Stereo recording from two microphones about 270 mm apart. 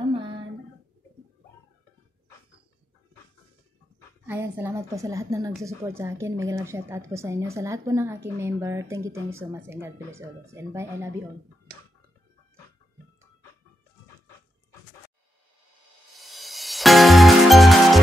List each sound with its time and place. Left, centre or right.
0.1 s a sound: centre
4.3 s speech: centre
16.2 s music: centre